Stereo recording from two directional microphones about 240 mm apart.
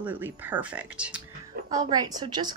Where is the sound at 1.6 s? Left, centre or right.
Centre.